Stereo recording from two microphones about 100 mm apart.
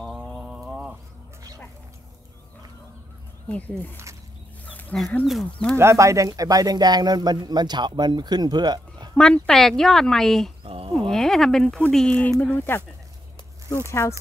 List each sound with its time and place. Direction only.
0.0 s a sound: centre (ahead or behind)
3.4 s speech: 15° left (ahead or behind)
3.9 s a sound: 30° right (ahead or behind)
4.6 s dog: 15° left (ahead or behind)
5.2 s speech: centre (ahead or behind)
5.8 s speech: 30° right (ahead or behind); by 9.1 s 45° right (ahead or behind)
9.1 s speech: 10° left (ahead or behind)
10.6 s a sound: 75° right (ahead or behind)
11.1 s speech: 5° left (ahead or behind); by 12.8 s 20° left (ahead or behind)
13.8 s speech: 25° left (ahead or behind)